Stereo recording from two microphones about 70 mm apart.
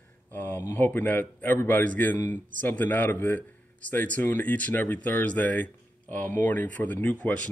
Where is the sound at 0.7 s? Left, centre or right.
Left.